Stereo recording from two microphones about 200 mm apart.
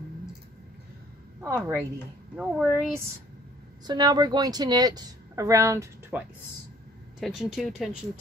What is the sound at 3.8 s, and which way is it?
Speech, 20° right (ahead or behind).